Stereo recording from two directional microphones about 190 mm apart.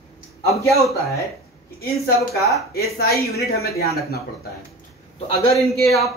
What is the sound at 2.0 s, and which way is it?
Speech, 55° left (ahead or behind).